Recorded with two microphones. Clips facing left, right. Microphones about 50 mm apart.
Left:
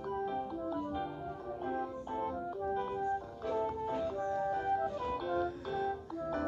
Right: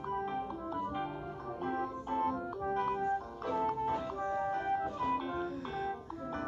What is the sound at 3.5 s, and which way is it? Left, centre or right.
Music, right.